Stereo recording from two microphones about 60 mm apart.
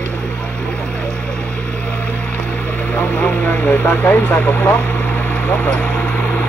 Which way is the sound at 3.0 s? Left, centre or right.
Left.